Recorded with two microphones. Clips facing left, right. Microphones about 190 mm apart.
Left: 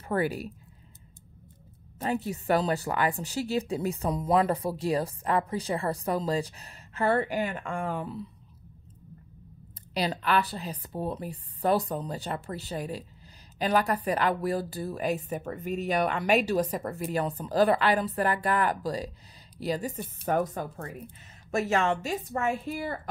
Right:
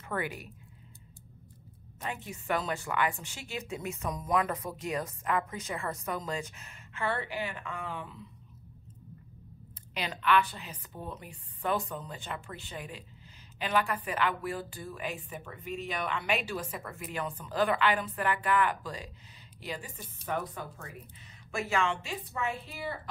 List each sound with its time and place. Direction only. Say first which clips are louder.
0.1 s speech: left 7 dB; 35° left (ahead or behind)
2.0 s speech: left 9 dB; 35° left (ahead or behind)
9.9 s speech: left 2 dB; 35° left (ahead or behind)
20.0 s a woman's voice: left 8 dB; 50° left (ahead or behind)